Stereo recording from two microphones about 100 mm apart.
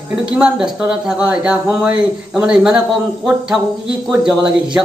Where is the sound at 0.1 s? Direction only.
10° right (ahead or behind).